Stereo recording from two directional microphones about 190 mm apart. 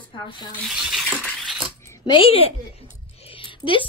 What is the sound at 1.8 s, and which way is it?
A woman's voice, 25° left (ahead or behind).